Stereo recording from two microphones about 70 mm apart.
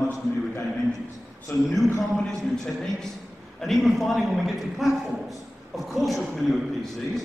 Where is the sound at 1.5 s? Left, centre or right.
Left.